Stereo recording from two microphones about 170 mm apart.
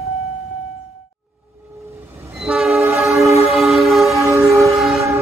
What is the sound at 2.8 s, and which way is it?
Train, 15° right (ahead or behind).